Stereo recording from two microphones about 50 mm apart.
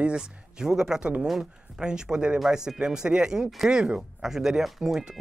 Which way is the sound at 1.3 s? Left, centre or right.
Centre.